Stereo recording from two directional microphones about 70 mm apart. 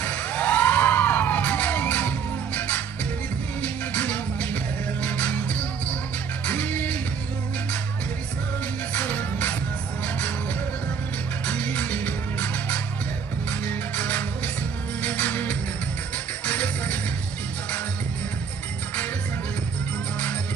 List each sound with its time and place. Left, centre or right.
0.0 s music: left
8.9 s music: left
11.4 s music: left